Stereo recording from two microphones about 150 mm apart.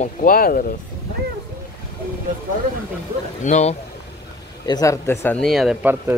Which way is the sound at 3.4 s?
50° left (ahead or behind).